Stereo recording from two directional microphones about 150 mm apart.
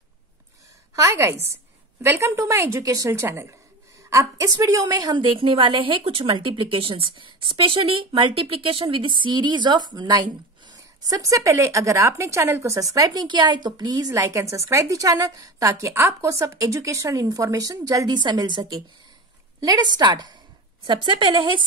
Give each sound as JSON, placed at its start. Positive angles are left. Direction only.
{"t": 0.9, "sound": "a woman's voice", "side_deg": -20}